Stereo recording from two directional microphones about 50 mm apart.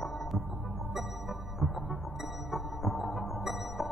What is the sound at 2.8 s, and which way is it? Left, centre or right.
Music, left.